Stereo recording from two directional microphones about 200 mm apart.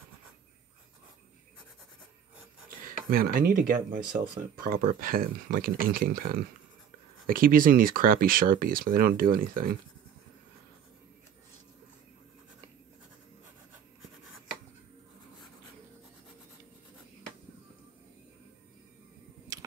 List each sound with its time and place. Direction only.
3.1 s speech: 45° right (ahead or behind)